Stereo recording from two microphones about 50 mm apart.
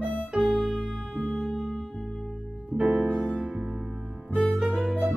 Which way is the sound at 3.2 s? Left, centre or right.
Centre.